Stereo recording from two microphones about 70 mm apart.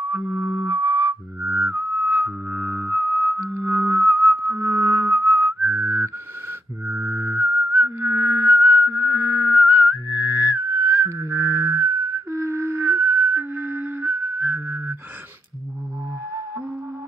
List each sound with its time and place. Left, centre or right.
0.1 s music: right
1.4 s whistling: right